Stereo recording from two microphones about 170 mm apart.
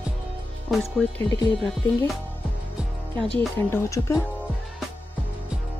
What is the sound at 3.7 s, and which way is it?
Speech, 20° left (ahead or behind).